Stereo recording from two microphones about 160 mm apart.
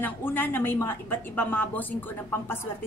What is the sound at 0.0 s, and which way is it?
A woman's voice, 15° left (ahead or behind).